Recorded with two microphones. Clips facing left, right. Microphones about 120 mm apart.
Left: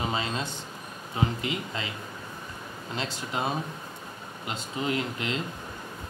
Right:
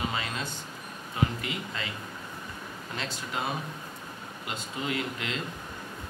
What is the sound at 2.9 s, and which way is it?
Speech, 20° left (ahead or behind).